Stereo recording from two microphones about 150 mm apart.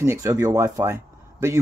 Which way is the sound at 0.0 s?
20° right (ahead or behind).